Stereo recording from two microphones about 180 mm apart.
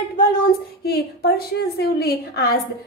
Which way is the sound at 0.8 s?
60° left (ahead or behind).